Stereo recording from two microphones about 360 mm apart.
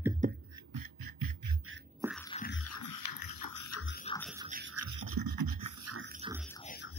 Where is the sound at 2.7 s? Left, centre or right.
Left.